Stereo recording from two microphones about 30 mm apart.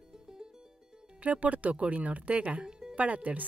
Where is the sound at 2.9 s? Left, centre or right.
Right.